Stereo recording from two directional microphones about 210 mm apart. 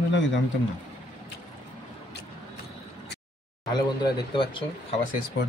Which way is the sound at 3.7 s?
20° left (ahead or behind).